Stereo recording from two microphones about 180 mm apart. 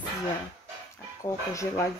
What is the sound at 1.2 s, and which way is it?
Speech, 15° left (ahead or behind).